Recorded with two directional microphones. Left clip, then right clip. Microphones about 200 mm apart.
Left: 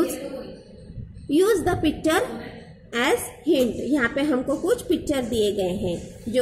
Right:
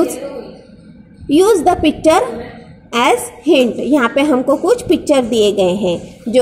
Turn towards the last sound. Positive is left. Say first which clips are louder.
# right 11 dB
turn(degrees=-20)  # may be behind; listen again after turning